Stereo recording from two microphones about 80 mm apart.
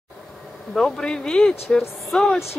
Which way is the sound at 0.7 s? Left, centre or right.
Centre.